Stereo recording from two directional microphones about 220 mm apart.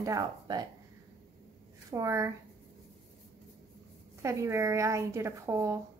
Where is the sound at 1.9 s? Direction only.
15° right (ahead or behind).